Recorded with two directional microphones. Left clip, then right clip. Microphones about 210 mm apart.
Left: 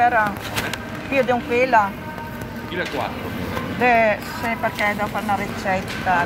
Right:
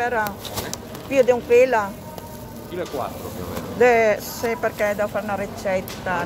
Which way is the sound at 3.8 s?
75° right (ahead or behind).